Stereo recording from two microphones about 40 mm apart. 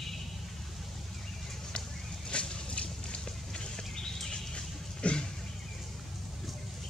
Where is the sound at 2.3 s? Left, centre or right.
Left.